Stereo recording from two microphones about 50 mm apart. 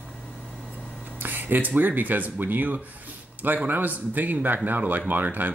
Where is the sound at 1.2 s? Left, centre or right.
Right.